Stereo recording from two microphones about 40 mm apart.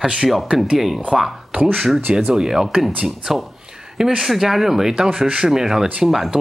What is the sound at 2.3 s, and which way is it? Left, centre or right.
Speech, centre.